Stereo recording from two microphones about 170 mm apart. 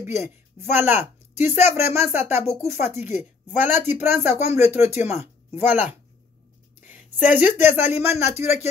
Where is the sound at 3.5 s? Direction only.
10° right (ahead or behind).